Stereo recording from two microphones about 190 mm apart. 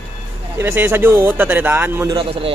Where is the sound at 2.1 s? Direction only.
30° right (ahead or behind).